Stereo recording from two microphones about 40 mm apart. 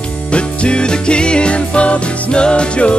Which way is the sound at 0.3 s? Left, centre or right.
Left.